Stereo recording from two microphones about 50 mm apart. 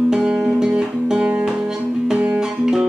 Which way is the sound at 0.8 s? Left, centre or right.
Centre.